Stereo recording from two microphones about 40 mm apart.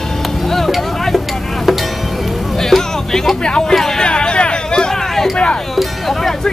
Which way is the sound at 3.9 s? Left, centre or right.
Left.